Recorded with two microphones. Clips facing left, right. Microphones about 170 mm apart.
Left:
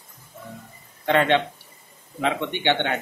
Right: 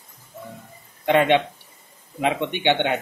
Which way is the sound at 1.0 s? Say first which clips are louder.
Right 2 dB; 15° right (ahead or behind).